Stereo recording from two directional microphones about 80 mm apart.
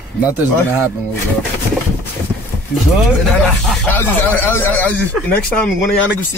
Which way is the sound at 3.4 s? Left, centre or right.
Centre.